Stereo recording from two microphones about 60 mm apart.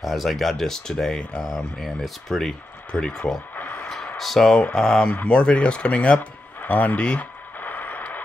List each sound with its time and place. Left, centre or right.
0.0 s speech: centre
3.5 s a sound: left
4.2 s speech: centre
5.1 s speech: centre
7.6 s radio: left